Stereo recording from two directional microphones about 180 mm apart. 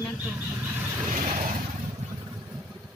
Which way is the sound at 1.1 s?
45° right (ahead or behind).